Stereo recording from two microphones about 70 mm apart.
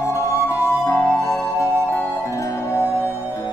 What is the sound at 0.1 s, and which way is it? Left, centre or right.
Music, left.